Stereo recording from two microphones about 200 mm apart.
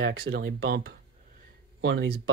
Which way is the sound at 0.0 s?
55° right (ahead or behind).